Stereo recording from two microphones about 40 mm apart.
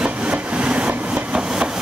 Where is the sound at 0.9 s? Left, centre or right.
Right.